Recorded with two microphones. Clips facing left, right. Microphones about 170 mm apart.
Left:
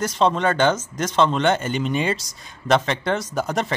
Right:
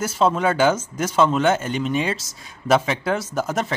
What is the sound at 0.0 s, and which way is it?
A man's voice, 5° right (ahead or behind).